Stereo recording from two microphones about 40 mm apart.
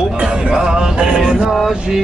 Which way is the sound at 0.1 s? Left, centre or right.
Right.